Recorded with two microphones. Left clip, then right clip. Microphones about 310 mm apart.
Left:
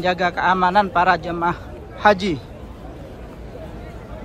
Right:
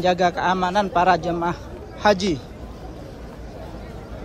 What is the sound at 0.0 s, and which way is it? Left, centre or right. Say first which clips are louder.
A man's voice: even; centre.